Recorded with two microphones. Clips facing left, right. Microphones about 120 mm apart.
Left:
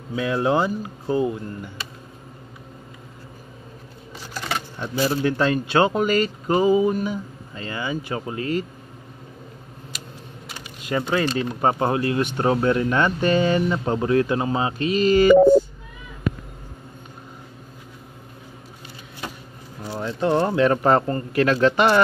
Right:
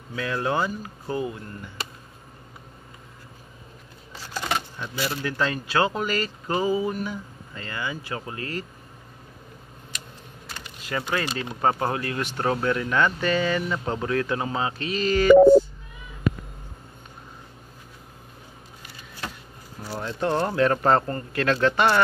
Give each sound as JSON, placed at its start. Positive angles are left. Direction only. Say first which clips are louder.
{"t": 0.1, "sound": "speech", "louder": "left 5 dB", "side_deg": 20}
{"t": 4.3, "sound": "a sound", "louder": "right 1 dB", "side_deg": 0}
{"t": 4.7, "sound": "speech", "louder": "left 6 dB", "side_deg": 35}
{"t": 5.1, "sound": "speech", "louder": "left 6 dB", "side_deg": 20}
{"t": 9.9, "sound": "typing", "louder": "left 1 dB", "side_deg": 5}
{"t": 10.9, "sound": "speech", "louder": "left 5 dB", "side_deg": 20}
{"t": 14.9, "sound": "mantra", "louder": "left 7 dB", "side_deg": 15}
{"t": 19.8, "sound": "speech", "louder": "left 3 dB", "side_deg": 25}